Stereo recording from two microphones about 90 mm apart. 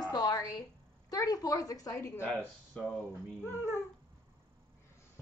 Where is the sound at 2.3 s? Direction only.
15° left (ahead or behind).